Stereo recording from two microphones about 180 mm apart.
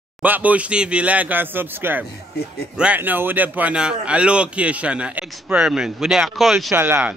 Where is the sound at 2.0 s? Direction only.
60° left (ahead or behind).